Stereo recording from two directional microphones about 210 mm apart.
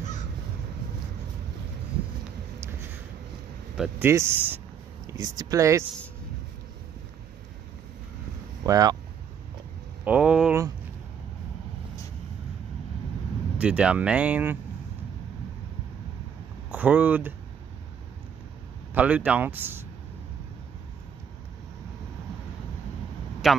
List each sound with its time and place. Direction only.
3.7 s speech: 5° right (ahead or behind)
8.6 s speech: 15° right (ahead or behind)
10.0 s a sound: 5° right (ahead or behind)
13.6 s speech: 5° right (ahead or behind)
16.7 s speech: 5° right (ahead or behind)
18.9 s speech: 5° right (ahead or behind)
23.4 s speech: centre (ahead or behind)